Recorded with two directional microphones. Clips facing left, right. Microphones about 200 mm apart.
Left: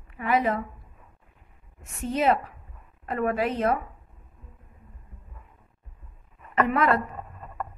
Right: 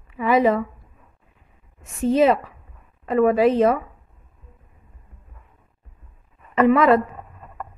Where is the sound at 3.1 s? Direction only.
90° right.